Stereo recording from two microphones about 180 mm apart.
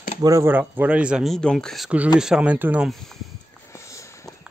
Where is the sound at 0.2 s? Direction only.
15° right (ahead or behind).